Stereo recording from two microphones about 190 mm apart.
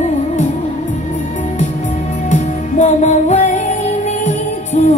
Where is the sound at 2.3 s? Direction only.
40° left (ahead or behind).